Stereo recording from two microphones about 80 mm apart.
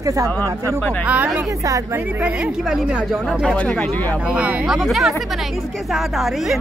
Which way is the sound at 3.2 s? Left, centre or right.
Centre.